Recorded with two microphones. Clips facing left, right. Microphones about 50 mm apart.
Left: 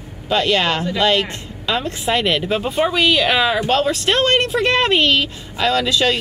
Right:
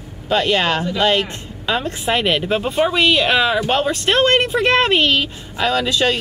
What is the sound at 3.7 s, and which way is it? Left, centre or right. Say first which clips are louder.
Speech: even; centre.